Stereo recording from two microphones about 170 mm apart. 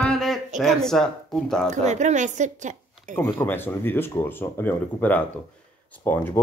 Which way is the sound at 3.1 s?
10° left (ahead or behind).